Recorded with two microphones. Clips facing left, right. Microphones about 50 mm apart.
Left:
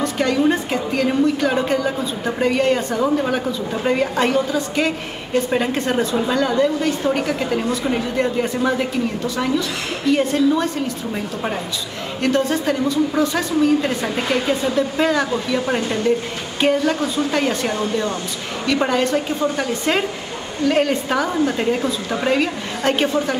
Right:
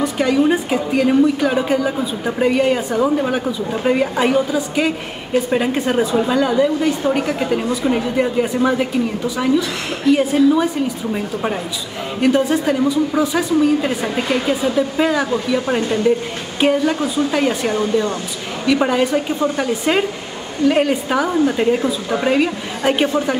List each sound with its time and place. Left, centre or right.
0.0 s a woman's voice: centre
12.2 s a woman's voice: centre